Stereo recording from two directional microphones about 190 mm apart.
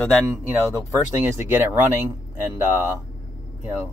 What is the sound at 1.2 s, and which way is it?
Speech, 10° right (ahead or behind).